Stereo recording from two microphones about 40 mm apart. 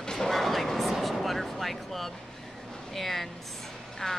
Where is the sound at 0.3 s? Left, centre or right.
Centre.